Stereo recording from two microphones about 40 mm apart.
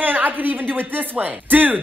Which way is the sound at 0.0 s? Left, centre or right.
Right.